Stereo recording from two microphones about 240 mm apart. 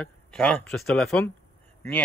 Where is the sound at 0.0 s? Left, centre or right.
Centre.